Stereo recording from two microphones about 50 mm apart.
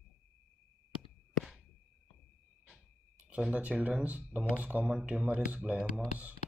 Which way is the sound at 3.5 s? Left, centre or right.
Right.